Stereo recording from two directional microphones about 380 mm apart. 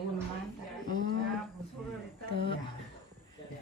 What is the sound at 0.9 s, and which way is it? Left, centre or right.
Speech, centre.